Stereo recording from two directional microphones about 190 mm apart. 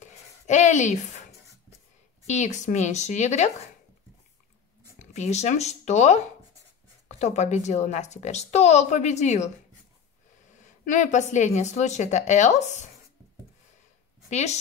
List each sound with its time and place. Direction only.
0.0 s a sound: 40° left (ahead or behind)
2.2 s speech: 40° left (ahead or behind)
5.1 s speech: 35° left (ahead or behind)
10.9 s speech: 40° left (ahead or behind)
14.3 s speech: 35° left (ahead or behind)